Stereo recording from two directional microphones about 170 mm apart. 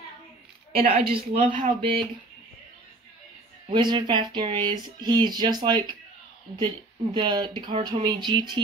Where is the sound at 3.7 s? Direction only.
30° right (ahead or behind).